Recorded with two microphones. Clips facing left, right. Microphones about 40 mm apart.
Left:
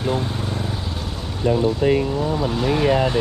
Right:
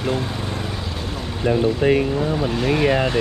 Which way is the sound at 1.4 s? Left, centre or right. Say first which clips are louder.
Even; right.